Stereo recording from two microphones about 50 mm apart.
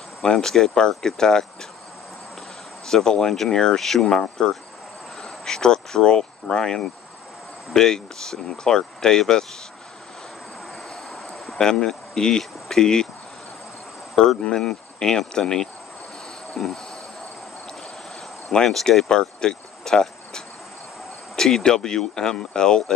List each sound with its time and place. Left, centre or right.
0.2 s speech: centre
2.9 s speech: centre
10.9 s vehicle: centre
11.5 s speech: centre
14.1 s speech: centre
16.5 s insect: centre
18.5 s speech: centre